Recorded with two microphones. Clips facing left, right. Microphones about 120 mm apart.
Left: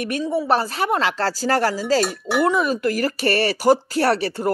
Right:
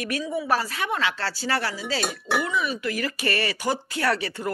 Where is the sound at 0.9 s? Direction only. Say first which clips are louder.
Left 6 dB; 40° left (ahead or behind).